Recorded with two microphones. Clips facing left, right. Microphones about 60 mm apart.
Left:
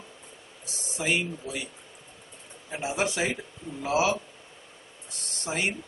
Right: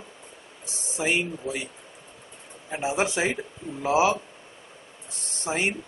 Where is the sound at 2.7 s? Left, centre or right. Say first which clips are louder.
Right 3 dB; right.